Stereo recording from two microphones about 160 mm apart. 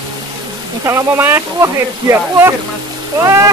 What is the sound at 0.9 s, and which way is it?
Speech, 15° right (ahead or behind).